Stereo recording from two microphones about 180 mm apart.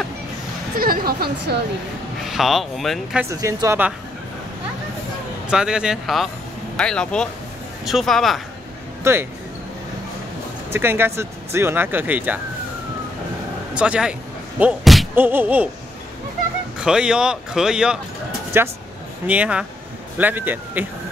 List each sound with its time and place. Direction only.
0.7 s speech: 55° right (ahead or behind)
2.2 s speech: centre (ahead or behind)
3.3 s speech: 15° right (ahead or behind)
5.5 s speech: 5° right (ahead or behind)
9.0 s speech: 15° right (ahead or behind)
10.7 s speech: 10° right (ahead or behind)
13.7 s speech: 5° right (ahead or behind)
14.6 s slam: 5° right (ahead or behind)
15.1 s speech: 10° right (ahead or behind)
16.8 s speech: 5° right (ahead or behind)